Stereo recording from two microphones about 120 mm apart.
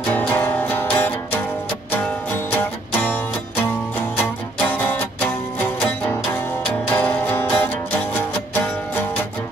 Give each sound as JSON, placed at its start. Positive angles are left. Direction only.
{"t": 0.1, "sound": "music", "side_deg": 15}
{"t": 3.0, "sound": "music", "side_deg": 15}
{"t": 6.9, "sound": "music", "side_deg": 10}